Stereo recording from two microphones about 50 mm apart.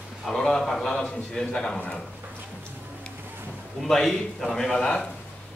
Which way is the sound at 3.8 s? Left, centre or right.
Centre.